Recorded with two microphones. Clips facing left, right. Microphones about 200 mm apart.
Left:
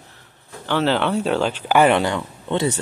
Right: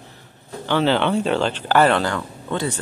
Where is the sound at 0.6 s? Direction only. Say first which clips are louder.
Right 1 dB; centre (ahead or behind); by 2.7 s 20° left (ahead or behind).